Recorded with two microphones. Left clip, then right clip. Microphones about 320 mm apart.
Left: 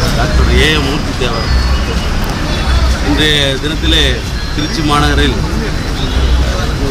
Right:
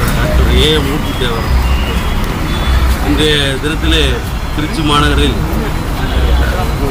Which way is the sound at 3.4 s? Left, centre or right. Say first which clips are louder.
Left 1 dB; centre.